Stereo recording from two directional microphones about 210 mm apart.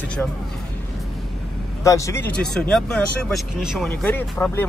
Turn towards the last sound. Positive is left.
turn(degrees=10)  # may be behind; listen again after turning